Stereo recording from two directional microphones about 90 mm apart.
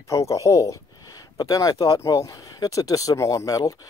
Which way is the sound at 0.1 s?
35° left (ahead or behind).